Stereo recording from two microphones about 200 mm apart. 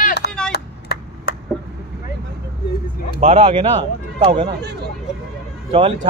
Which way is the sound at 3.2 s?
30° right (ahead or behind).